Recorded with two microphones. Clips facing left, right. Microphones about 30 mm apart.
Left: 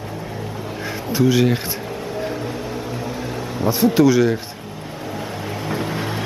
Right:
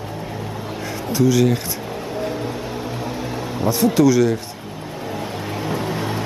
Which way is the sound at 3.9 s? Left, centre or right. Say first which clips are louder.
Even; centre.